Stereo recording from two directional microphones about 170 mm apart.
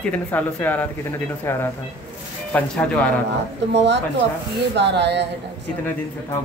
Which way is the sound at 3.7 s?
90° right.